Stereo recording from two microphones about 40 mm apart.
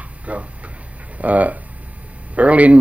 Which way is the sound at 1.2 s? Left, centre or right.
Right.